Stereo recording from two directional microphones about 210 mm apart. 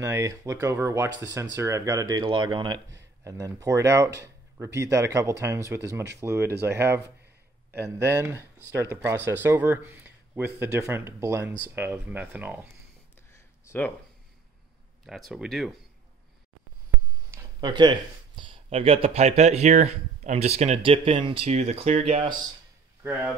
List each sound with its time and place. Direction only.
0.0 s speech: 15° right (ahead or behind)
8.0 s speech: 10° right (ahead or behind)
13.7 s speech: 10° left (ahead or behind)
15.0 s speech: centre (ahead or behind)
17.3 s speech: 15° right (ahead or behind)